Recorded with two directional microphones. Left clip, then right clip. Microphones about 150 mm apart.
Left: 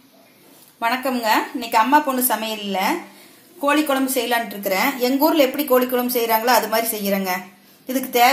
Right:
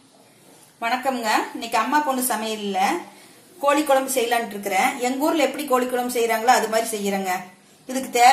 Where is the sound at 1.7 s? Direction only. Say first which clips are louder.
Left 5 dB; 50° left (ahead or behind).